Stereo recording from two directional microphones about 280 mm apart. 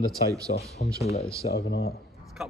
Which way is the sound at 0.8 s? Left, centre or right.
Left.